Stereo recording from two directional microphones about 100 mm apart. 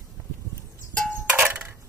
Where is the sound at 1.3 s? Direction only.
15° right (ahead or behind).